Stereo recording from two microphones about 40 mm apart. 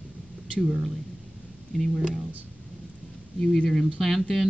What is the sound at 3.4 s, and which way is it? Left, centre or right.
Speech, centre.